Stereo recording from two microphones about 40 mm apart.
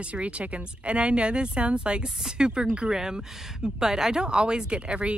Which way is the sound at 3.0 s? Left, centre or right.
Centre.